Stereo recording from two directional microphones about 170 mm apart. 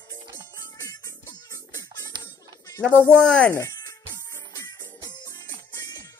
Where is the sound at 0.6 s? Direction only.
20° left (ahead or behind).